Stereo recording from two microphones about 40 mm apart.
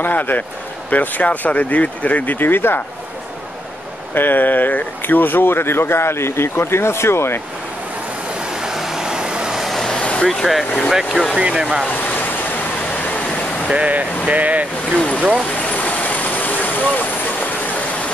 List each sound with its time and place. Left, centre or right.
0.0 s a man's voice: left
2.3 s speech: left
4.1 s speech: left
8.5 s vehicle: centre
9.9 s vehicle: left
10.2 s speech: centre
11.3 s speech: right
12.0 s waves: left
13.7 s speech: right
15.0 s speech: left
15.7 s vehicle: left